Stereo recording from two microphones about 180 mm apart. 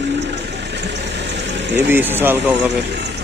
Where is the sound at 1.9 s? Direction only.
10° right (ahead or behind).